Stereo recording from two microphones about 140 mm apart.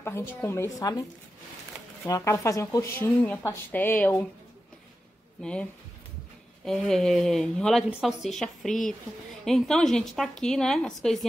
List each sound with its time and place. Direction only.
0.0 s speech: 15° left (ahead or behind)
2.0 s speech: 25° left (ahead or behind)
5.4 s speech: 5° left (ahead or behind)